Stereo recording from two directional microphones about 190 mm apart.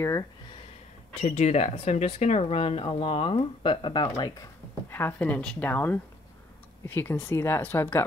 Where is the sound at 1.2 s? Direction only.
35° left (ahead or behind).